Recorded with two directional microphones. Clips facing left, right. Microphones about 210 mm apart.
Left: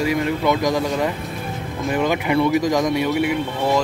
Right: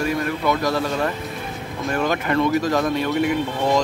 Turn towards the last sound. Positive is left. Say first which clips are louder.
# even
turn(degrees=5)  # may be behind; listen again after turning